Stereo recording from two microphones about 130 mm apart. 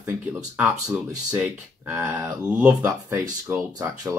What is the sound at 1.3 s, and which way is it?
Speech, 10° right (ahead or behind).